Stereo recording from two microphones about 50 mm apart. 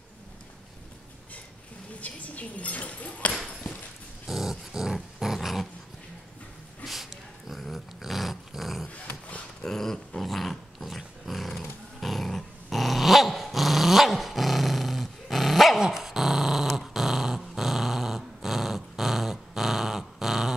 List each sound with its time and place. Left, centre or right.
2.0 s speech: left
4.3 s dog: centre
6.8 s dog: centre
8.8 s dog: left
9.6 s dog: centre
15.8 s dog: centre